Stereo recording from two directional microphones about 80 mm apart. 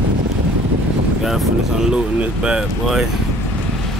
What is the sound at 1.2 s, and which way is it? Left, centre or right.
Speech, centre.